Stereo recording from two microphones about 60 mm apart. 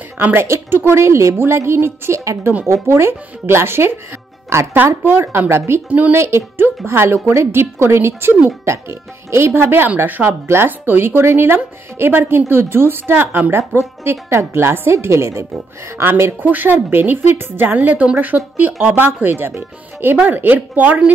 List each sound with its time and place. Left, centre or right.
0.2 s a woman's voice: right
5.9 s a woman's voice: right
6.1 s a woman's voice: right
15.5 s a woman's voice: right
16.4 s a woman's voice: right